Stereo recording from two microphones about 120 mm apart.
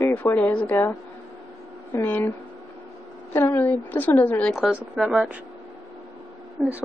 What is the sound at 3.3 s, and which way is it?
A woman's voice, 15° left (ahead or behind).